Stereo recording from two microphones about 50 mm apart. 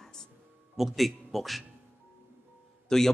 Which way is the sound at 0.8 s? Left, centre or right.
Centre.